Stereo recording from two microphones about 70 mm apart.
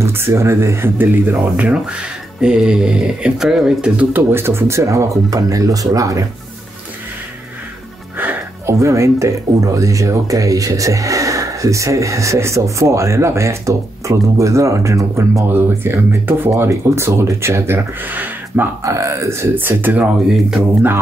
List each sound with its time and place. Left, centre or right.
0.0 s speech: right
2.4 s speech: centre
4.1 s speech: right
8.6 s speech: right
15.4 s speech: right
18.8 s speech: right
19.5 s speech: right